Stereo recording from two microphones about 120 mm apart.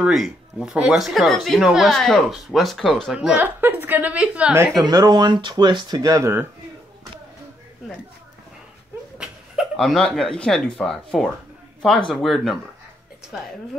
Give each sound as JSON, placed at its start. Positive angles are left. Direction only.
{"t": 0.0, "sound": "speech", "side_deg": 0}
{"t": 3.2, "sound": "a woman's voice", "side_deg": -10}
{"t": 4.8, "sound": "speech", "side_deg": -35}
{"t": 9.2, "sound": "speech", "side_deg": -5}